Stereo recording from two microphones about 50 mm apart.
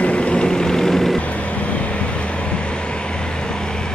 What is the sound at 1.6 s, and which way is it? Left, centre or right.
Vehicle, left.